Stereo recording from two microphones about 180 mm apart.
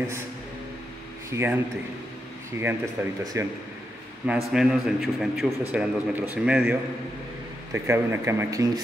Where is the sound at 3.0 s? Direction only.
10° right (ahead or behind).